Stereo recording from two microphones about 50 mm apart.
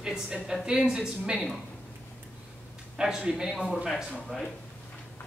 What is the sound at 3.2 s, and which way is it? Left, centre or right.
Speech, centre.